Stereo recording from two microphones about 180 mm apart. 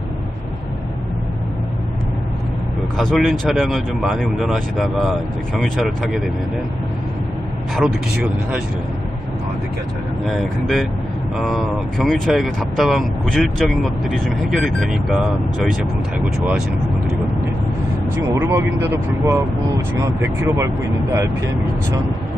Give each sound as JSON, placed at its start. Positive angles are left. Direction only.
{"t": 3.0, "sound": "speech", "side_deg": 0}
{"t": 7.7, "sound": "speech", "side_deg": -5}
{"t": 11.3, "sound": "speech", "side_deg": 0}
{"t": 18.3, "sound": "speech", "side_deg": -15}